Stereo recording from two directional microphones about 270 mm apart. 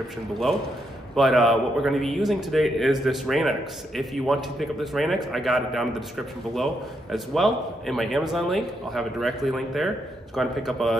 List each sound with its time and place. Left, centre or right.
1.1 s a man's voice: centre